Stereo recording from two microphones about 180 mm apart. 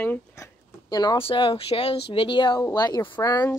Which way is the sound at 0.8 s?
20° left (ahead or behind).